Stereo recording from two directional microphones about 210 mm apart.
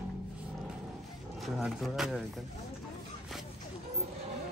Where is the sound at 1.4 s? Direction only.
Centre (ahead or behind).